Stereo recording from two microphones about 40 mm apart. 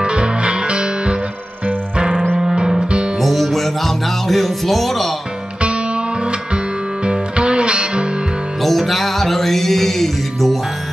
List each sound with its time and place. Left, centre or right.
0.0 s music: right
2.3 s music: centre
3.2 s music: centre
7.1 s music: right
8.6 s music: centre